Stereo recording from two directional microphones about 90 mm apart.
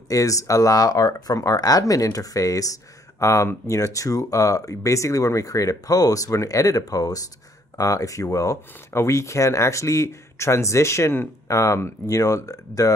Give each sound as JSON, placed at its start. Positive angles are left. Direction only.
{"t": 0.1, "sound": "speech", "side_deg": 40}